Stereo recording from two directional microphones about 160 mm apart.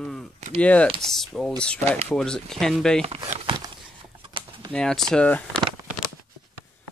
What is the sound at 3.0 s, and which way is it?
Speech, 35° right (ahead or behind).